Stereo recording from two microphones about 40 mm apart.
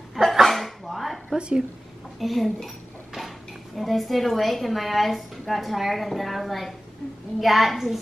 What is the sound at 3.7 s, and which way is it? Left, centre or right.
A woman's voice, centre.